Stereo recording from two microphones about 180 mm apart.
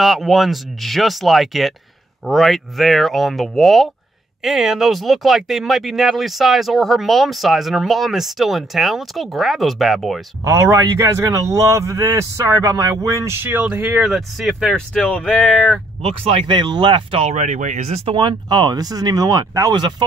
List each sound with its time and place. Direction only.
0.0 s speech: centre (ahead or behind)
10.4 s speech: 15° right (ahead or behind); by 15.8 s centre (ahead or behind)
16.0 s speech: 30° right (ahead or behind)